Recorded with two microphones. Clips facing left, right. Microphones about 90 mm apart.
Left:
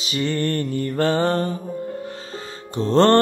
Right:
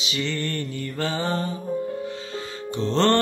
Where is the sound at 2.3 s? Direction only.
45° left (ahead or behind).